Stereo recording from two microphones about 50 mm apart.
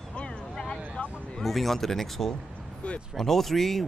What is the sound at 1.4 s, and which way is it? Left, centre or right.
Speech, centre.